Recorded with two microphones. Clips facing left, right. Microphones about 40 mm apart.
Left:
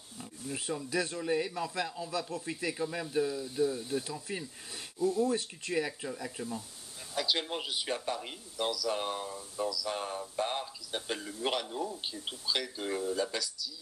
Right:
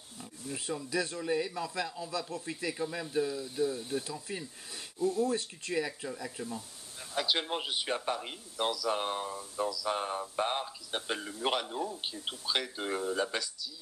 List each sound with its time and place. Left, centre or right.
0.2 s speech: centre
7.2 s speech: centre